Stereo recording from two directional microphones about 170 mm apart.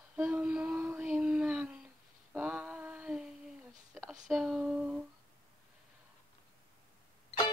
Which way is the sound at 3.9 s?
Centre (ahead or behind).